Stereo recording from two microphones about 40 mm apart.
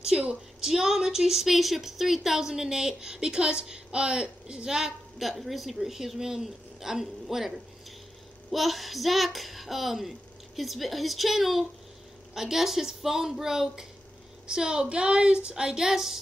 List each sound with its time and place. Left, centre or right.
0.0 s a sound: centre
0.7 s a woman's voice: centre
5.4 s a woman's voice: centre